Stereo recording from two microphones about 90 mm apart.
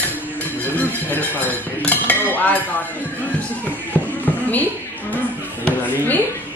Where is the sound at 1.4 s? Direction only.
20° left (ahead or behind).